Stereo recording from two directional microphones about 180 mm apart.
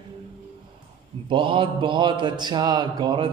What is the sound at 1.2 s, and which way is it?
Mantra, 30° right (ahead or behind).